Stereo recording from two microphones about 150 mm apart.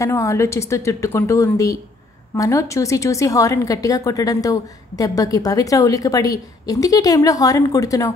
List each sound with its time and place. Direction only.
0.0 s a woman's voice: 20° left (ahead or behind)